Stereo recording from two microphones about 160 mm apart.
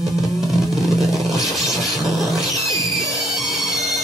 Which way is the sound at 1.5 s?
Centre (ahead or behind).